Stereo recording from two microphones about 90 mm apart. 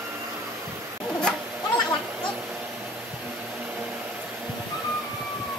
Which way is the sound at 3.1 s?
30° right (ahead or behind).